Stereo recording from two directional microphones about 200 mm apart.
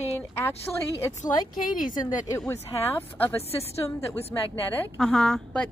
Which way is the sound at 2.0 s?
20° left (ahead or behind).